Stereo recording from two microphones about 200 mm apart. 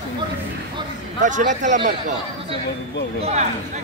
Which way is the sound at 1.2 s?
40° right (ahead or behind).